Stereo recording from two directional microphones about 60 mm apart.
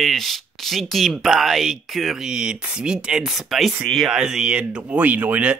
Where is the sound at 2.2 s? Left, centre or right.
Centre.